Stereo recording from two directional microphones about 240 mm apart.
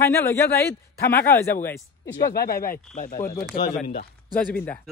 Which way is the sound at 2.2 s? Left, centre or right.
Left.